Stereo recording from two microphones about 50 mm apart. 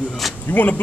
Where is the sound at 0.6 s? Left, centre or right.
Left.